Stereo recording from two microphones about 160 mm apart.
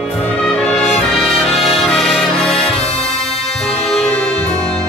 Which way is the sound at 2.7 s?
40° left (ahead or behind).